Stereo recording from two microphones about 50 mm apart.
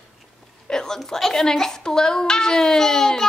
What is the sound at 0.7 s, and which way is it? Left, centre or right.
A woman's voice, centre.